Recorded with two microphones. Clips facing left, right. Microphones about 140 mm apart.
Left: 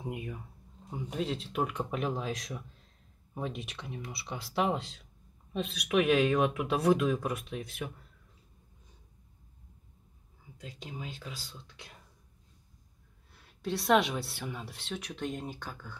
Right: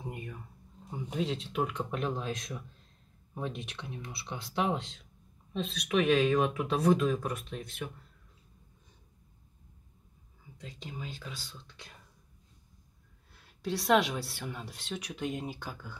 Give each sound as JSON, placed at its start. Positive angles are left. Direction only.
{"t": 0.0, "sound": "a sound", "side_deg": 5}
{"t": 0.8, "sound": "speech", "side_deg": 5}
{"t": 13.3, "sound": "speech", "side_deg": 0}